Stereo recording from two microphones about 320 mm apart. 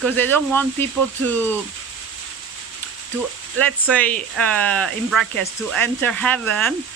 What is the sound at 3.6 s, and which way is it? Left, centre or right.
Speech, centre.